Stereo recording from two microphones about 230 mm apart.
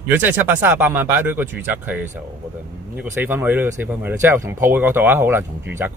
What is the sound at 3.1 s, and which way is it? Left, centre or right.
Speech, centre.